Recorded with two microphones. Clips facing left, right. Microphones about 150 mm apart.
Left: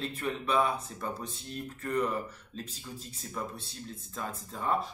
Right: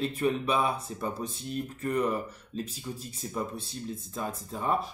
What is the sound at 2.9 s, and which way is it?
Speech, 15° right (ahead or behind).